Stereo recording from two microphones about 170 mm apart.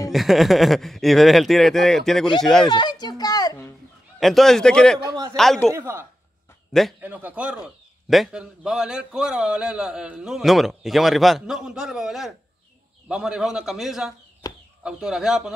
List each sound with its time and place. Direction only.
0.1 s a man's voice: centre (ahead or behind)
2.7 s a sound: 25° left (ahead or behind)
4.2 s a man's voice: centre (ahead or behind)
5.7 s a woman's voice: 15° right (ahead or behind)